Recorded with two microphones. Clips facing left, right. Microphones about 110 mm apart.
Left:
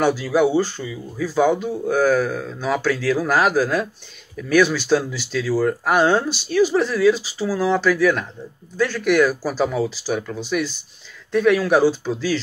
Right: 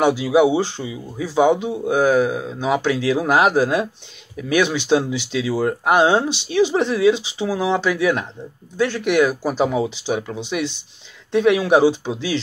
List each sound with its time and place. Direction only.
0.0 s speech: 15° right (ahead or behind)